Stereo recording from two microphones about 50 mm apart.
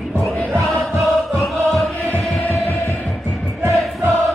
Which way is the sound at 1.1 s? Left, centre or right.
Centre.